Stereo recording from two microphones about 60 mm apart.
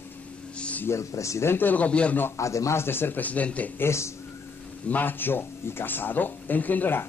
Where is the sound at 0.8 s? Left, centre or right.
Left.